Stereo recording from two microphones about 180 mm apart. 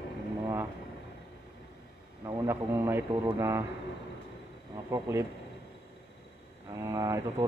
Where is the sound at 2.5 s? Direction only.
10° right (ahead or behind).